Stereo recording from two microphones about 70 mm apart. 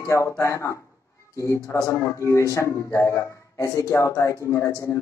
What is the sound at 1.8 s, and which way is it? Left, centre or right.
Speech, left.